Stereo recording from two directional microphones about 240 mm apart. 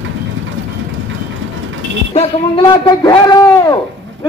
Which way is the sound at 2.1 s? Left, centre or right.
Left.